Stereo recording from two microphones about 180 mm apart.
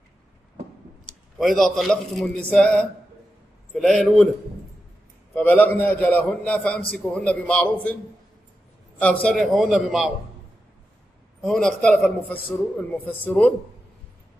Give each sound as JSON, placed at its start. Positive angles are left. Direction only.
{"t": 1.0, "sound": "a man's voice", "side_deg": 0}
{"t": 5.3, "sound": "a man's voice", "side_deg": 10}
{"t": 9.0, "sound": "a man's voice", "side_deg": 5}
{"t": 11.4, "sound": "a man's voice", "side_deg": 5}